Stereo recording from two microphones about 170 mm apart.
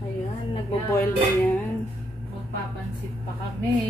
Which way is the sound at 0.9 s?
15° left (ahead or behind).